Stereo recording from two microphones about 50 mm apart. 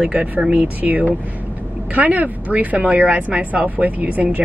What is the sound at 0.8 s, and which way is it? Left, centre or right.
Speech, right.